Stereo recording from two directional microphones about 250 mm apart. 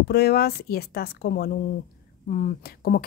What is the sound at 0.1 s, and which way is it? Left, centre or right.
Speech, left.